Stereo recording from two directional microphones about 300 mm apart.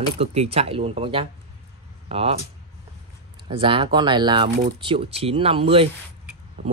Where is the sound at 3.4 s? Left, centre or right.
Centre.